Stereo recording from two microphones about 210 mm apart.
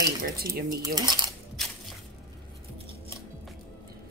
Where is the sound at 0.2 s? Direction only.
45° right (ahead or behind).